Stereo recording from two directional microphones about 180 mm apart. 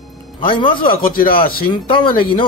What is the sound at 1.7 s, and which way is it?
Speech, 25° left (ahead or behind).